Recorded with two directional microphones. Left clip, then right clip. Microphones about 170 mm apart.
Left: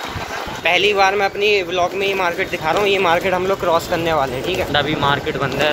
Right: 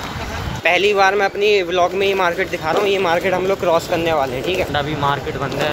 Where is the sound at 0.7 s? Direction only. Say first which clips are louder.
Right 1 dB; 40° right (ahead or behind).